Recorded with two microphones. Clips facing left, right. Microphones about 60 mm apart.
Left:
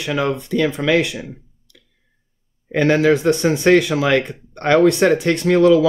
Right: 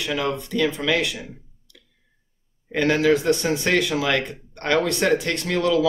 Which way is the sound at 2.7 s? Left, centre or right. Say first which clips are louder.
Left 4 dB; left.